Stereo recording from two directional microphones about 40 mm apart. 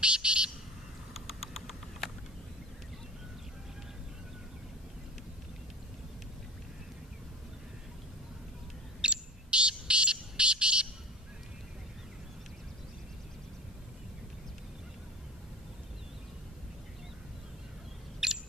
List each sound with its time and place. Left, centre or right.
0.0 s bird: right
1.1 s patter: centre
9.0 s bird: right
18.2 s a sound: centre